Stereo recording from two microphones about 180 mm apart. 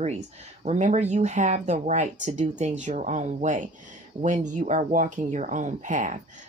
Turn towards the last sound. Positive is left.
turn(degrees=-45)  # may be behind; listen again after turning